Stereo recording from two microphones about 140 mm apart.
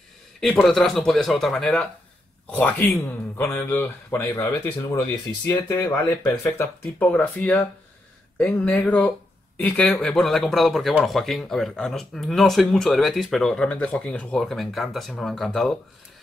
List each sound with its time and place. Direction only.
0.4 s a man's voice: centre (ahead or behind); by 4.3 s 15° left (ahead or behind)
5.5 s a man's voice: 20° left (ahead or behind); by 15.7 s centre (ahead or behind)